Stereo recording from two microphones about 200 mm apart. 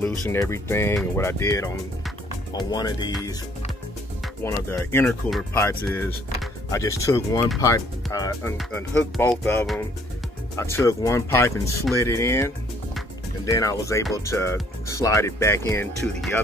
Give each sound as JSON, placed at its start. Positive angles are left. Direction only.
{"t": 0.0, "sound": "speech", "side_deg": 15}
{"t": 4.4, "sound": "speech", "side_deg": 10}